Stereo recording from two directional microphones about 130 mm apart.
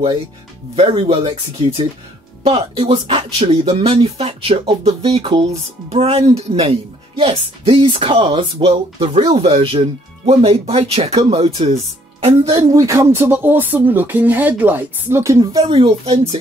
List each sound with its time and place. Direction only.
0.7 s speech: 45° right (ahead or behind)
12.5 s speech: 25° right (ahead or behind)
15.6 s speech: 45° right (ahead or behind)